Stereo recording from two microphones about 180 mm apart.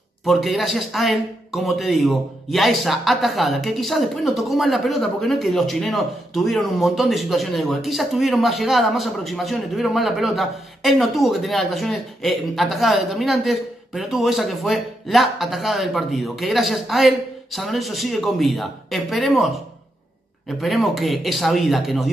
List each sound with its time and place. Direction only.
0.2 s speech: centre (ahead or behind)